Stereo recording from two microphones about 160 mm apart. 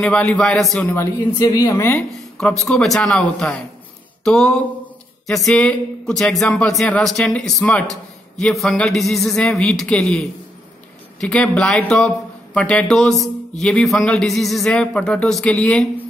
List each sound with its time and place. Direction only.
0.0 s speech: 5° left (ahead or behind)
1.4 s a woman's voice: 25° left (ahead or behind)
2.0 s speech: 5° left (ahead or behind)